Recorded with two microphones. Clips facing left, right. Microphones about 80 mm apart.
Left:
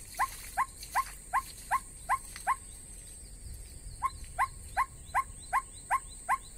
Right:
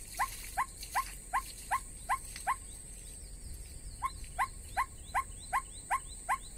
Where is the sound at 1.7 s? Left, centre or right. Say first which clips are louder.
Left 4 dB; left.